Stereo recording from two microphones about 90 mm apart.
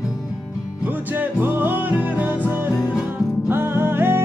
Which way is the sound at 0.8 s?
20° right (ahead or behind).